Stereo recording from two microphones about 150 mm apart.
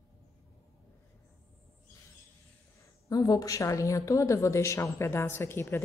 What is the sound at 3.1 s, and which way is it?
A woman's voice, 25° left (ahead or behind).